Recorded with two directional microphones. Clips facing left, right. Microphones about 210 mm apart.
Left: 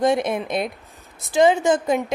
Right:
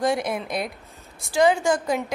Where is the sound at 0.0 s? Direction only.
20° left (ahead or behind).